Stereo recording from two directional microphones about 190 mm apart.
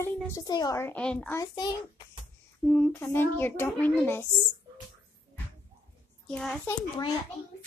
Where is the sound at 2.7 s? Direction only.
10° left (ahead or behind).